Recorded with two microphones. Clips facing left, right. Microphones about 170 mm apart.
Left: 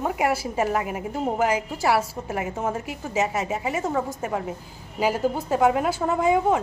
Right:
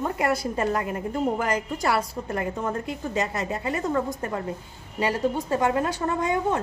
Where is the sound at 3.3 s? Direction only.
80° left.